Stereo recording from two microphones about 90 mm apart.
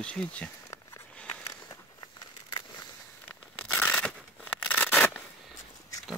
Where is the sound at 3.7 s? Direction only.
15° left (ahead or behind).